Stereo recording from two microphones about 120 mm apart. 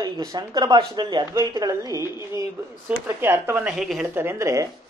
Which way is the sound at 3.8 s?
5° right (ahead or behind).